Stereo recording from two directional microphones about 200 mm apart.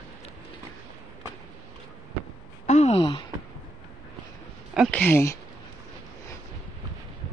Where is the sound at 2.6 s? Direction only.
35° left (ahead or behind).